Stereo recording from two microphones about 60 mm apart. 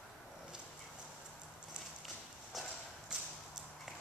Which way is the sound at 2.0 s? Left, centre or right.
Centre.